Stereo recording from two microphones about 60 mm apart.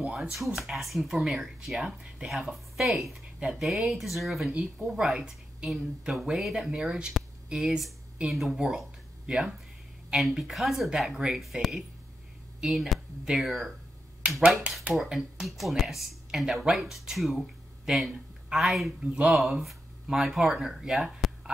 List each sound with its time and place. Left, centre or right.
0.2 s speech: centre
3.3 s speech: centre
3.6 s speech: centre
4.9 s a woman's voice: centre
7.5 s speech: centre
14.4 s speech: centre
15.0 s speech: centre